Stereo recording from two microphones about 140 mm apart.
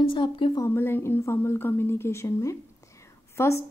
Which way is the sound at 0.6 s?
15° left (ahead or behind).